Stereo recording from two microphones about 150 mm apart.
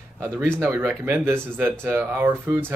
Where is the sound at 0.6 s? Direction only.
15° right (ahead or behind).